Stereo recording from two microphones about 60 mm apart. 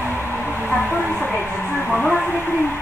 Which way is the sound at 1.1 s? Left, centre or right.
Left.